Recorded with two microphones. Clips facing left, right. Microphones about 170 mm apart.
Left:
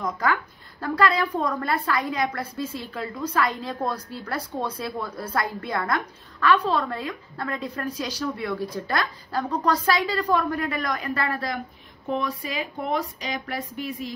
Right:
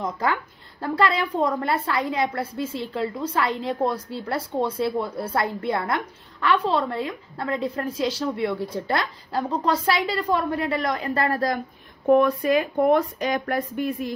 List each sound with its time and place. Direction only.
0.0 s a woman's voice: 25° right (ahead or behind); by 11.6 s 40° right (ahead or behind)
12.1 s speech: 55° right (ahead or behind)